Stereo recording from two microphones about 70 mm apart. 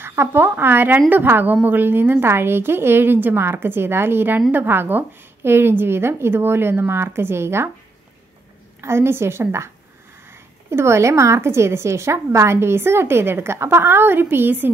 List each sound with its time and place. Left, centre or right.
0.0 s a woman's voice: right
8.8 s a woman's voice: right